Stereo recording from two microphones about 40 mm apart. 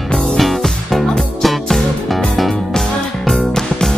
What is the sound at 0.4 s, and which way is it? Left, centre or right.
Music, centre.